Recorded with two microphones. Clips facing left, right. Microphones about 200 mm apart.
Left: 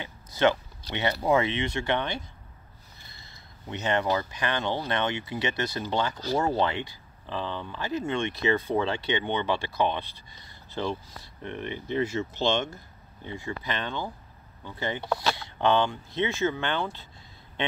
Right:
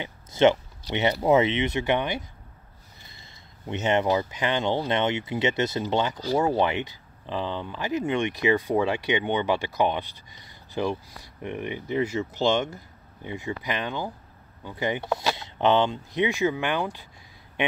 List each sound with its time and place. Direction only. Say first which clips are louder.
0.0 s speech: right 4 dB; 20° right (ahead or behind)
3.6 s speech: right 3 dB; 20° right (ahead or behind)